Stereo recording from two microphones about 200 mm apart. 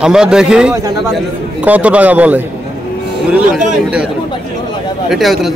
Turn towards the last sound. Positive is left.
turn(degrees=0)  # may be behind; listen again after turning